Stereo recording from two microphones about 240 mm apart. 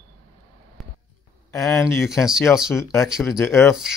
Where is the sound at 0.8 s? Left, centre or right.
Centre.